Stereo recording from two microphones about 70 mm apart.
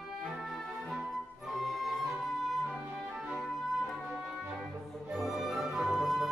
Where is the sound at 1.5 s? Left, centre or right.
Centre.